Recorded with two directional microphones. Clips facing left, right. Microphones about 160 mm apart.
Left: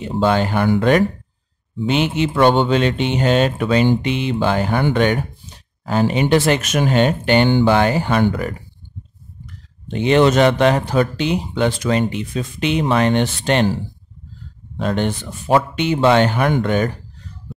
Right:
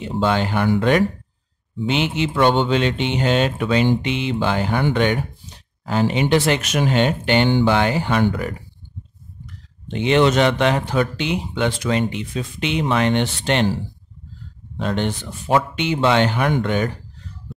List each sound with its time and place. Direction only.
0.0 s speech: 45° left (ahead or behind)
9.8 s speech: 40° left (ahead or behind)
14.8 s speech: 45° left (ahead or behind)
17.5 s music: centre (ahead or behind)